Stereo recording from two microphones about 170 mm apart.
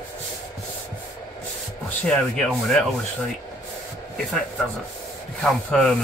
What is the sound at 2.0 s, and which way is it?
Rub, 5° left (ahead or behind).